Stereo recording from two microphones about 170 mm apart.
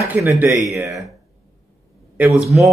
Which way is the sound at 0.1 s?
15° right (ahead or behind).